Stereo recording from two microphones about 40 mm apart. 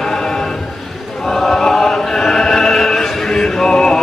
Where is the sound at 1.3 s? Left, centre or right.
Centre.